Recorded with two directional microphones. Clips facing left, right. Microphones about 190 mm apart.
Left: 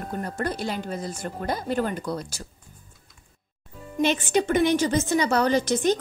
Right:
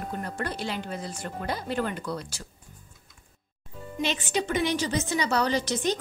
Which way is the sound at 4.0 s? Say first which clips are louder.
Left 6 dB; 50° left (ahead or behind).